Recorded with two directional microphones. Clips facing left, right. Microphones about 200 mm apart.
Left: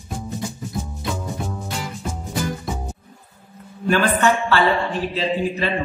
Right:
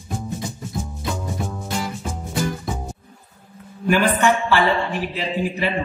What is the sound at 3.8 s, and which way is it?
Speech, 15° right (ahead or behind).